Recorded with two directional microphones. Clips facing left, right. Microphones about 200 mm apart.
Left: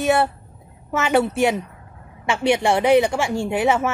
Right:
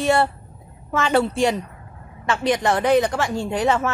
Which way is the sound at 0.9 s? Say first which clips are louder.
Left 1 dB; 5° left (ahead or behind).